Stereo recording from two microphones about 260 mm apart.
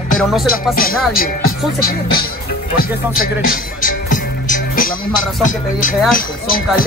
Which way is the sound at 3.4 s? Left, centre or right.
Left.